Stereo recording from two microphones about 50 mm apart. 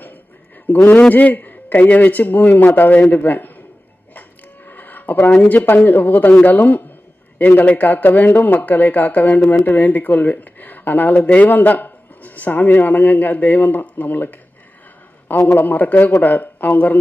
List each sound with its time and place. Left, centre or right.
0.7 s speech: left
4.6 s a sound: left
5.9 s speech: left
11.1 s speech: left